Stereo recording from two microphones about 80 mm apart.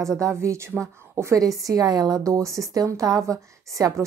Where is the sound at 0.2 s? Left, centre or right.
Right.